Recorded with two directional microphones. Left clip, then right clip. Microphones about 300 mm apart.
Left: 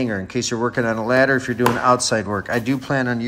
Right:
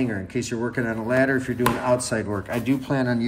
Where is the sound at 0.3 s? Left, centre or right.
Centre.